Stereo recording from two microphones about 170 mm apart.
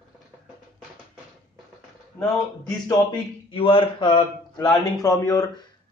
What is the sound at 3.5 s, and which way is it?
Speech, 30° left (ahead or behind).